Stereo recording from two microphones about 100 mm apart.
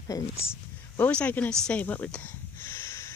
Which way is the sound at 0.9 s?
15° left (ahead or behind).